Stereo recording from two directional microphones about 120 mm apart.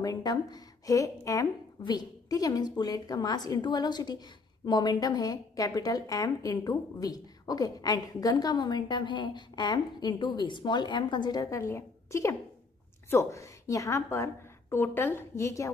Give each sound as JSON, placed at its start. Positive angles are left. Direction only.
{"t": 0.0, "sound": "a woman's voice", "side_deg": 35}
{"t": 11.6, "sound": "a woman's voice", "side_deg": 20}